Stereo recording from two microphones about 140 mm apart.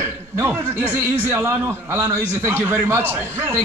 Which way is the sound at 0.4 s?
15° right (ahead or behind).